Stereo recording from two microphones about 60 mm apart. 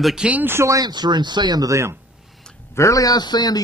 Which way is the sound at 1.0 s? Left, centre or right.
Right.